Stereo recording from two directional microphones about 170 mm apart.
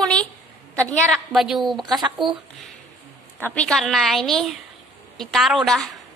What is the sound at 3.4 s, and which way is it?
A woman's voice, 5° left (ahead or behind).